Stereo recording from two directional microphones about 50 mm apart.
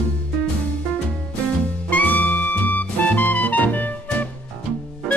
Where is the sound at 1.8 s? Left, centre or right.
Left.